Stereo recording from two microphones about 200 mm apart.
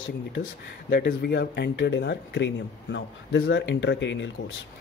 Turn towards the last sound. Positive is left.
turn(degrees=65)  # may be behind; listen again after turning